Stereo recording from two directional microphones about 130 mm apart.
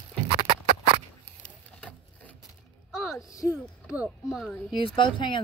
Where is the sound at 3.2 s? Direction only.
25° left (ahead or behind).